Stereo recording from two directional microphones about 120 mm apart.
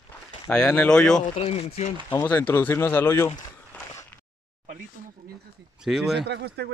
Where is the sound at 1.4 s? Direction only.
55° left (ahead or behind).